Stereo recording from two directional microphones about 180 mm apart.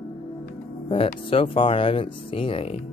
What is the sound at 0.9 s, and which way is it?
Speech, 30° left (ahead or behind).